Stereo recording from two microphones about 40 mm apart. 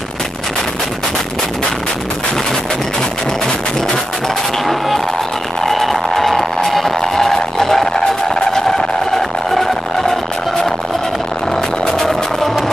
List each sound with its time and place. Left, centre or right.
3.0 s a sound: centre
4.6 s music: centre
11.8 s music: centre
12.1 s music: centre